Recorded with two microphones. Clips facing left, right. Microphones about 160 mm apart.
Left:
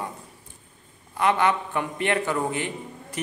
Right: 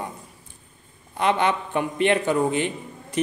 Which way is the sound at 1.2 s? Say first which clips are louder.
Even; 20° right (ahead or behind).